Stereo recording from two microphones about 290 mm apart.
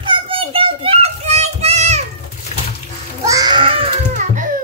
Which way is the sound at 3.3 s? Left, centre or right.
Centre.